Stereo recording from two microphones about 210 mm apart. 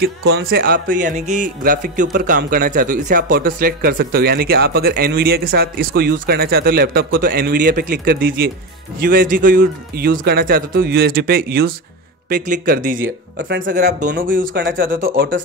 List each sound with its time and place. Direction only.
0.3 s speech: 45° right (ahead or behind)
0.9 s speech: 35° right (ahead or behind)
13.4 s speech: 60° right (ahead or behind)
13.9 s speech: 40° right (ahead or behind)